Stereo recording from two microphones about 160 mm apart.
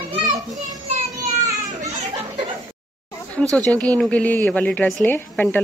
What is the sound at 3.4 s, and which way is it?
Speech, 5° left (ahead or behind).